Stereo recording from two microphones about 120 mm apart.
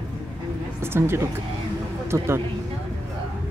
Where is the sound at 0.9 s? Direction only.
20° right (ahead or behind).